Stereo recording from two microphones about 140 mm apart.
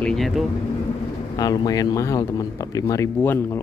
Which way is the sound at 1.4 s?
25° left (ahead or behind).